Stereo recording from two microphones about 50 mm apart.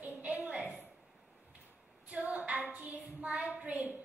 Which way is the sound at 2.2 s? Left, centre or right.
Right.